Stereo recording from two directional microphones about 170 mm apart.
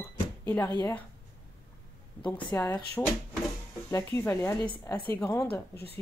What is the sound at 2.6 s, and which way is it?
Speech, 10° left (ahead or behind).